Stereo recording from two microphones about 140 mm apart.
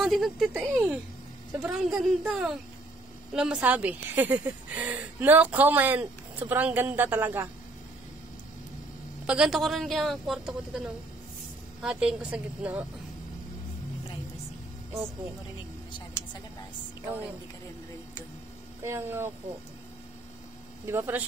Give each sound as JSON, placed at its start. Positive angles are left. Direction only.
{"t": 0.0, "sound": "speech", "side_deg": 0}
{"t": 0.5, "sound": "speech", "side_deg": -10}
{"t": 9.2, "sound": "speech", "side_deg": -5}
{"t": 11.8, "sound": "speech", "side_deg": -5}
{"t": 18.8, "sound": "speech", "side_deg": -15}
{"t": 20.8, "sound": "speech", "side_deg": -20}